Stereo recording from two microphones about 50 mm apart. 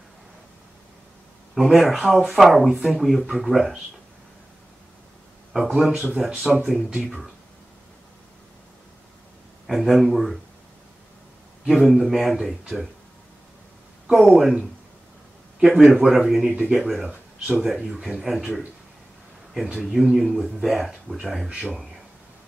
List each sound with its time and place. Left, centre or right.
1.5 s speech: centre
5.5 s speech: centre
9.7 s speech: centre
11.6 s speech: centre
14.0 s speech: centre
15.6 s speech: centre
17.1 s speech: right
17.6 s speech: centre
19.5 s speech: centre